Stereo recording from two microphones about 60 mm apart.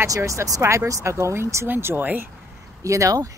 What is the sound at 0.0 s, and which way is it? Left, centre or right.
Speech, right.